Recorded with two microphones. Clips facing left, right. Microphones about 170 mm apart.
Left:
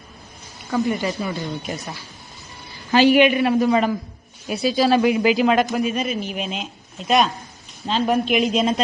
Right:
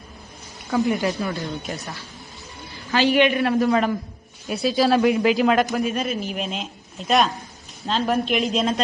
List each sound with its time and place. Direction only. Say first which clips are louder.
0.7 s speech: right 1 dB; centre (ahead or behind)
2.9 s speech: left 4 dB; 15° left (ahead or behind)